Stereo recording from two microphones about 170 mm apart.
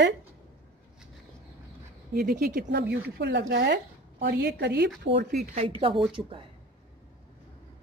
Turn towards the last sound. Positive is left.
turn(degrees=-30)  # may be behind; listen again after turning